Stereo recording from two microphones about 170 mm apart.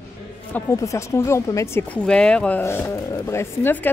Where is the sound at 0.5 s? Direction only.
20° left (ahead or behind).